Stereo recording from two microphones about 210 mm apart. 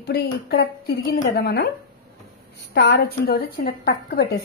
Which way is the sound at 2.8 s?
50° left (ahead or behind).